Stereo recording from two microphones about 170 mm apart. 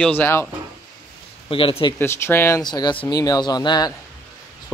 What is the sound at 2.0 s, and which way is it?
Speech, 15° left (ahead or behind).